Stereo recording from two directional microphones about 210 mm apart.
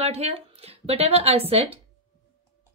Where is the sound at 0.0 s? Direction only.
30° right (ahead or behind).